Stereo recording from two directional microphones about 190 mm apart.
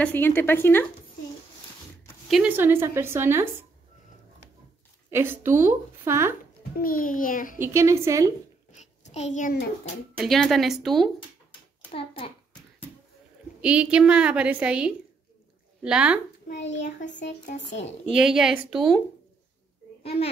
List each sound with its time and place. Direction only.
0.0 s a woman's voice: 10° left (ahead or behind)
2.2 s a woman's voice: 5° right (ahead or behind)
5.1 s a woman's voice: 10° right (ahead or behind)
6.8 s a child's voice: 45° left (ahead or behind)
7.6 s a woman's voice: 15° right (ahead or behind)
8.7 s a sound: 35° left (ahead or behind)
10.1 s a woman's voice: centre (ahead or behind)
11.9 s a child's voice: 30° left (ahead or behind)
13.6 s a woman's voice: 5° right (ahead or behind)
17.2 s a child's voice: 40° left (ahead or behind)
18.1 s a woman's voice: 5° right (ahead or behind)
20.0 s a child's voice: 30° left (ahead or behind)